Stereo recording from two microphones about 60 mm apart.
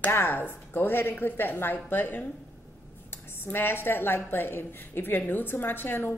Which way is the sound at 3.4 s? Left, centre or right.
Left.